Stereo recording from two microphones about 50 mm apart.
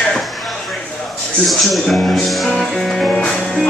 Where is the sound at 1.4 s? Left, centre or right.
Centre.